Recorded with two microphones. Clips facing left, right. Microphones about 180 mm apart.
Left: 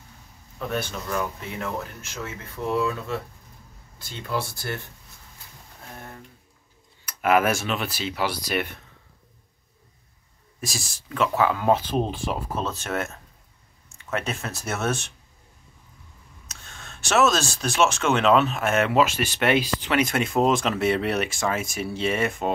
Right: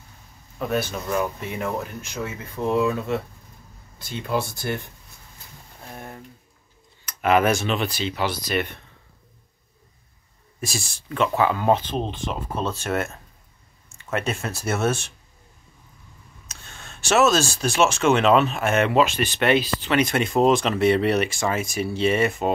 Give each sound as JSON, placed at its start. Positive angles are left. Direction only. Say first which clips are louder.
{"t": 0.6, "sound": "speech", "louder": "right 4 dB", "side_deg": -10}
{"t": 5.9, "sound": "a sound", "louder": "right 4 dB", "side_deg": -15}
{"t": 7.1, "sound": "speech", "louder": "right 2 dB", "side_deg": 5}
{"t": 10.6, "sound": "speech", "louder": "right 3 dB", "side_deg": 0}
{"t": 16.4, "sound": "speech", "louder": "right 1 dB", "side_deg": 0}